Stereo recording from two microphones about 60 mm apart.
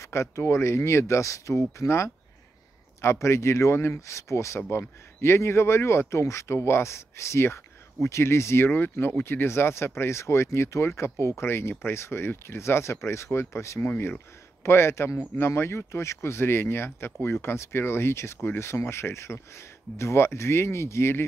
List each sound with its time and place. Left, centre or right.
0.0 s a sound: left
0.4 s speech: left
4.6 s speech: left
13.8 s speech: left
14.6 s speech: left